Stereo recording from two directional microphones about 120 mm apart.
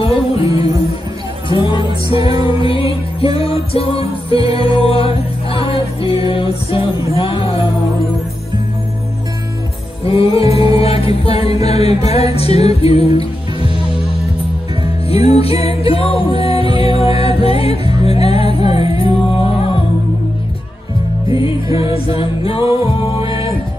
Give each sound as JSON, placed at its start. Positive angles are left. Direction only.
{"t": 0.0, "sound": "music", "side_deg": 55}
{"t": 1.5, "sound": "music", "side_deg": 45}
{"t": 10.0, "sound": "music", "side_deg": 50}
{"t": 21.3, "sound": "music", "side_deg": 45}